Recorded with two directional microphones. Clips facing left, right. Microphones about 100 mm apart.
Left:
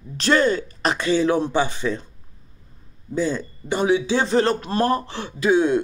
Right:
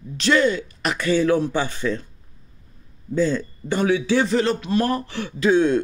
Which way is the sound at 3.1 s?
15° left (ahead or behind).